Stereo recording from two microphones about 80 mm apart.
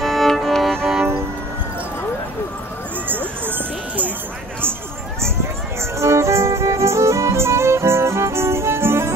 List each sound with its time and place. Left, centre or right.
0.0 s music: centre
3.1 s music: right
5.9 s music: right